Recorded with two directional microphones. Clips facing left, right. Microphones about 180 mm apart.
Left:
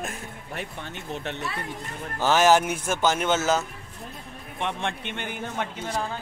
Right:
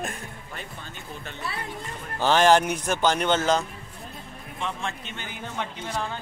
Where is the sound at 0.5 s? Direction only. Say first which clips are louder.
Left 7 dB; 70° left (ahead or behind).